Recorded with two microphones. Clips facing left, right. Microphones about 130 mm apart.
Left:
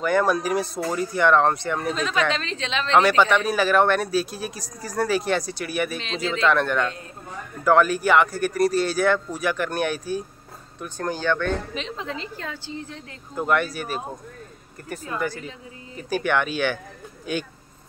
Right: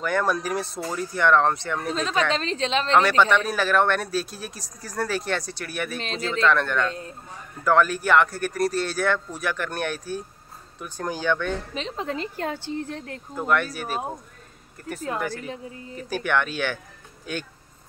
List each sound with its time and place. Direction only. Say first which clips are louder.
0.0 s speech: left 3 dB; 5° left (ahead or behind)
2.0 s a woman's voice: even; 30° right (ahead or behind)
2.9 s speech: left 2 dB; 5° left (ahead or behind)
10.8 s speech: left 2 dB; 10° right (ahead or behind)
11.7 s a woman's voice: right 2 dB; 40° right (ahead or behind); by 13.2 s 55° right (ahead or behind)
13.4 s speech: left 1 dB; 5° left (ahead or behind)
15.1 s speech: left 1 dB; centre (ahead or behind)